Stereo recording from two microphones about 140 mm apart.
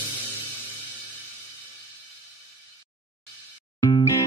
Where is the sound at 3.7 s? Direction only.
30° left (ahead or behind).